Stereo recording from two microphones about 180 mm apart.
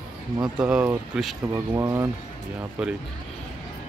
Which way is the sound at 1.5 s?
20° right (ahead or behind).